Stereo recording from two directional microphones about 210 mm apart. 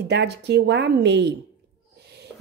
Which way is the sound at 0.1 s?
50° right (ahead or behind).